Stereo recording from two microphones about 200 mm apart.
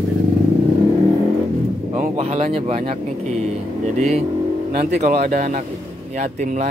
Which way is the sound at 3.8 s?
35° right (ahead or behind).